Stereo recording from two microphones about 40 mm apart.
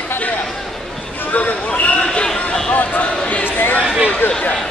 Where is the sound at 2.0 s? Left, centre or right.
Centre.